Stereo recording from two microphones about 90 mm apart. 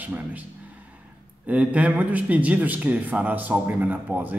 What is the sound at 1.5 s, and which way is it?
A man's voice, 15° right (ahead or behind).